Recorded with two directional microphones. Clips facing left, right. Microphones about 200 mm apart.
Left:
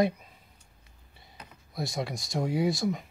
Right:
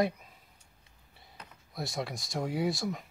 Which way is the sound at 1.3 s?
Centre (ahead or behind).